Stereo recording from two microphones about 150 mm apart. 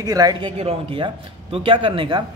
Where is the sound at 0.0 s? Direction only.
25° right (ahead or behind).